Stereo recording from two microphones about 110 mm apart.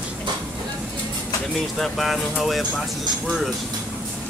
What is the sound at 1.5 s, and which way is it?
Speech, centre (ahead or behind).